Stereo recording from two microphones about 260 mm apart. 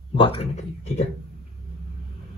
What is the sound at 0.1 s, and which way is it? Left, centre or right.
Speech, left.